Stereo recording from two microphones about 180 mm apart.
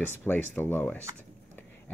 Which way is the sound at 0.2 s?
10° left (ahead or behind).